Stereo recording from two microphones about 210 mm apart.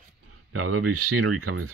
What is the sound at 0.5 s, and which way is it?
Speech, 90° right.